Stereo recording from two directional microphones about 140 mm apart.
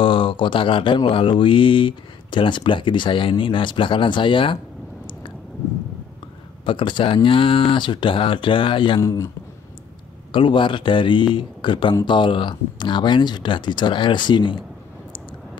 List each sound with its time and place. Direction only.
0.0 s speech: 35° left (ahead or behind)
6.6 s speech: 35° left (ahead or behind)
9.0 s a man's voice: 20° left (ahead or behind)
10.3 s speech: 35° left (ahead or behind)